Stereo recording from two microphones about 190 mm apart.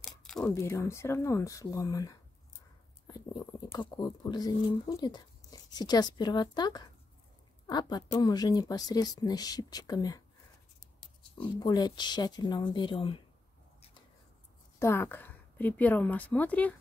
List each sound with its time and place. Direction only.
0.0 s a sound: centre (ahead or behind)
0.6 s a woman's voice: 15° left (ahead or behind)
3.7 s speech: 20° left (ahead or behind)
11.3 s speech: 25° left (ahead or behind)
14.8 s a woman's voice: 15° left (ahead or behind)